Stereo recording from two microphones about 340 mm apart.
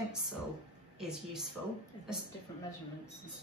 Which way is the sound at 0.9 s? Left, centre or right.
Centre.